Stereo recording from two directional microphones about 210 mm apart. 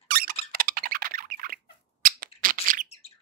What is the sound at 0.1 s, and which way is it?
Squeak, 45° right (ahead or behind).